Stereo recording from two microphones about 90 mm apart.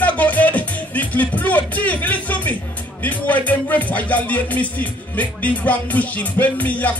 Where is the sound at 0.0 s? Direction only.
15° left (ahead or behind).